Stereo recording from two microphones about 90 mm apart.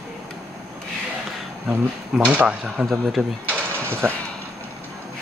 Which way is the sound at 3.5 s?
25° right (ahead or behind).